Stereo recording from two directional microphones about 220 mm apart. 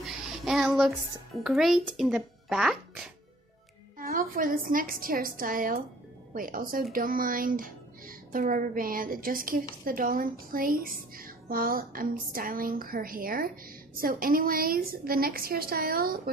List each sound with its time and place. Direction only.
0.0 s a child's voice: centre (ahead or behind)
4.0 s speech: 40° right (ahead or behind)